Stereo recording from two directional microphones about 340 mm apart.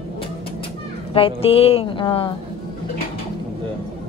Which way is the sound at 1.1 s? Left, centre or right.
Centre.